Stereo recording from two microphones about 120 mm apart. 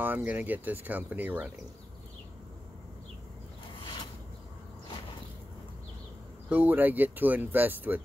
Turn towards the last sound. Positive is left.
turn(degrees=-15)  # may be behind; listen again after turning